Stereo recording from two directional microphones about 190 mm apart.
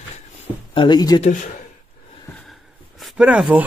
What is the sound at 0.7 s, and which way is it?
Speech, 25° left (ahead or behind).